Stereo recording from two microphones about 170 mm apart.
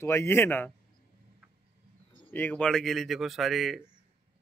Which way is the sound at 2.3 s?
10° left (ahead or behind).